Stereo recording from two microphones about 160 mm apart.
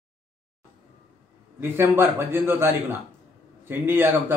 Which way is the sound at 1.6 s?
15° right (ahead or behind).